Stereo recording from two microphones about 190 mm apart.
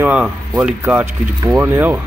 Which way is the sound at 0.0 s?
10° right (ahead or behind).